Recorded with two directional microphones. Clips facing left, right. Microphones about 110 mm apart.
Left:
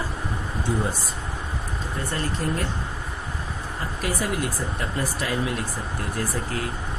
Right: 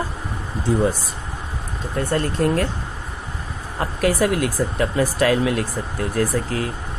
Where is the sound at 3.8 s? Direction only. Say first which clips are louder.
Right 9 dB; 80° right.